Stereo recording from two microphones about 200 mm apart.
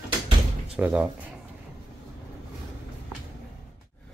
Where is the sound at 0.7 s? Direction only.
5° right (ahead or behind).